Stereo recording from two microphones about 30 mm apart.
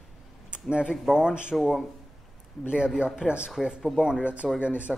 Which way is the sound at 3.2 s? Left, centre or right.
Right.